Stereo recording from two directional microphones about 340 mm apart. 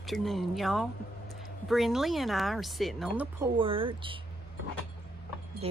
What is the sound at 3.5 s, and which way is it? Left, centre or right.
Speech, centre.